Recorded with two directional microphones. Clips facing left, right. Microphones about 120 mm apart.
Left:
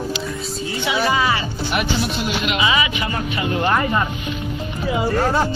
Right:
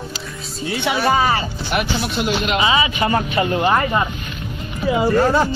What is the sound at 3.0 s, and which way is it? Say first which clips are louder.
Speech: right 5 dB; 40° right (ahead or behind).